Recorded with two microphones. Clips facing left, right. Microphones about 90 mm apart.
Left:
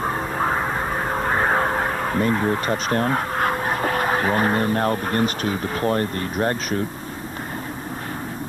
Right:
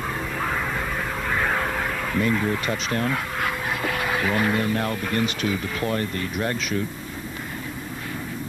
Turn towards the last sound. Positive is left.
turn(degrees=40)  # may be behind; listen again after turning